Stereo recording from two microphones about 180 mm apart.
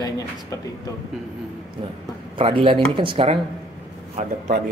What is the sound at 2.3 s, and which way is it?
Speech, 30° right (ahead or behind).